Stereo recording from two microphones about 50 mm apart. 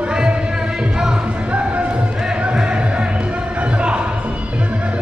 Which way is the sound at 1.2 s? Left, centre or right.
Right.